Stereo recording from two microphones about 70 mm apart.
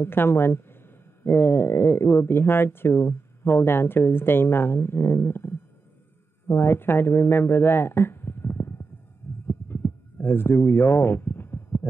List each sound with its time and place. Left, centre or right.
0.0 s speech: left
9.5 s heart sounds: left